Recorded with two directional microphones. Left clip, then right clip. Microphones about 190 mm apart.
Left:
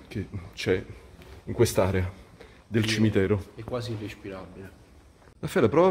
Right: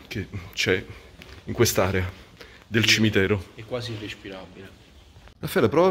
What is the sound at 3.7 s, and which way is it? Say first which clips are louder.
Speech: right 2 dB; 50° left (ahead or behind).